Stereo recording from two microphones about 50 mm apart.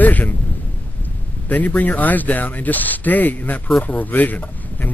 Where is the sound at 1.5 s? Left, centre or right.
Left.